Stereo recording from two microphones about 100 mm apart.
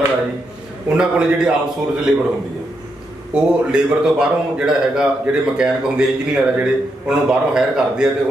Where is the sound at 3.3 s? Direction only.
10° right (ahead or behind).